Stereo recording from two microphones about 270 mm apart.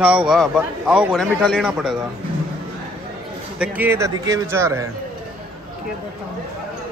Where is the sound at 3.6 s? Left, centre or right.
Centre.